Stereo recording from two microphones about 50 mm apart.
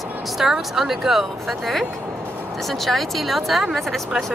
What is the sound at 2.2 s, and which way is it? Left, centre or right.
Music, right.